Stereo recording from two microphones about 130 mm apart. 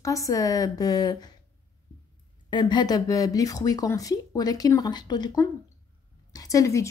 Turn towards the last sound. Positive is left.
turn(degrees=25)  # may be behind; listen again after turning